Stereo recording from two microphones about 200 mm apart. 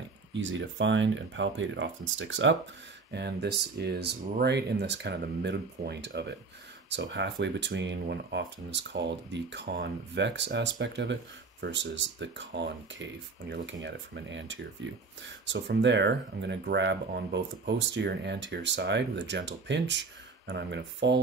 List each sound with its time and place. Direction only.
0.3 s speech: 65° right (ahead or behind)
3.1 s speech: 55° right (ahead or behind)